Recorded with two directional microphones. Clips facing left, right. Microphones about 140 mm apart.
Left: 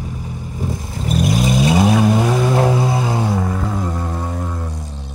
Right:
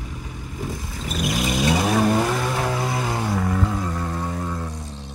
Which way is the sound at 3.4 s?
10° left (ahead or behind).